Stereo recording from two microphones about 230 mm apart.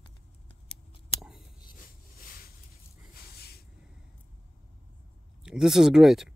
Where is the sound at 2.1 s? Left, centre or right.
Left.